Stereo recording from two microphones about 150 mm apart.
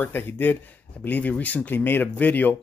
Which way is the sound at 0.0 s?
15° left (ahead or behind).